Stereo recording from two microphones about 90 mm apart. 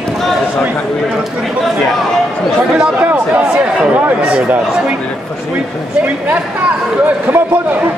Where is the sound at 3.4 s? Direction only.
10° right (ahead or behind).